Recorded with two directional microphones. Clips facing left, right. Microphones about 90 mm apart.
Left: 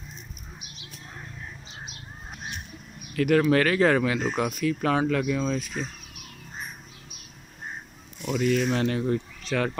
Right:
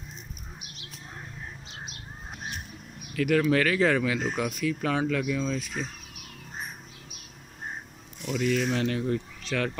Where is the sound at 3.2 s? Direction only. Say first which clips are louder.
Left 3 dB; 25° left (ahead or behind).